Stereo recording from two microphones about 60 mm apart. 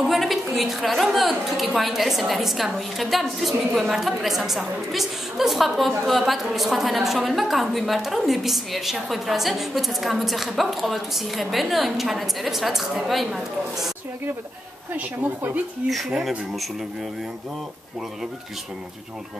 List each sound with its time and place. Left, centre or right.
0.1 s a woman's voice: centre
15.0 s speech: right
16.2 s a woman's voice: centre